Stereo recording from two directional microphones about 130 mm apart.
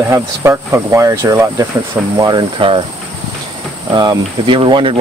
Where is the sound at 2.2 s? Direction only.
35° right (ahead or behind).